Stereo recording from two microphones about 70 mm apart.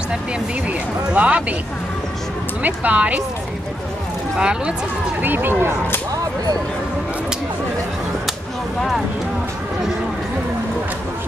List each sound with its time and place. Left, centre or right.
0.7 s speech: centre
2.6 s speech: centre
4.4 s speech: centre
5.2 s speech: right